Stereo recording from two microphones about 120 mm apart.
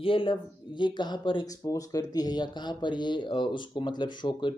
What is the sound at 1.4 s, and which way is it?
Speech, 30° left (ahead or behind).